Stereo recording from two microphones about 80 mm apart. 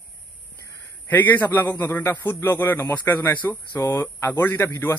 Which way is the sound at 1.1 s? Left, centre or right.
Left.